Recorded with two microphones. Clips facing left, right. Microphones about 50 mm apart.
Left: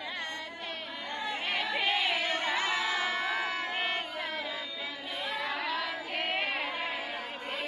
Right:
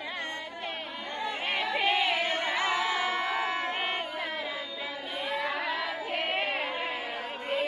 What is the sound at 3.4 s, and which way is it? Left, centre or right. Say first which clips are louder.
Crowd: right 3 dB; right.